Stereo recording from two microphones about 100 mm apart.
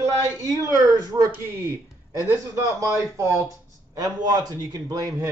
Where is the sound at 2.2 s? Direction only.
30° right (ahead or behind).